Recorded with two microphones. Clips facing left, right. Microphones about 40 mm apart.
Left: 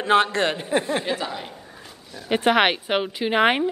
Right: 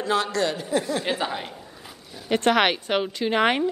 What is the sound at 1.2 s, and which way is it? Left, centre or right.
Speech, centre.